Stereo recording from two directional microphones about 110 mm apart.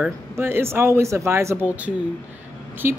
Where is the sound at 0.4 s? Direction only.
20° right (ahead or behind).